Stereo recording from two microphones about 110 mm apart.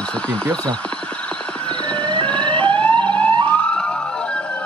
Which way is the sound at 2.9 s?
45° right (ahead or behind).